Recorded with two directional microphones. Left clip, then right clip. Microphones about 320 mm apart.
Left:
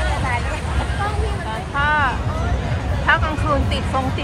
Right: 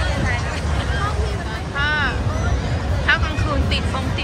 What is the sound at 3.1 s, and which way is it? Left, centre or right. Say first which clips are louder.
Music: left 1 dB; centre.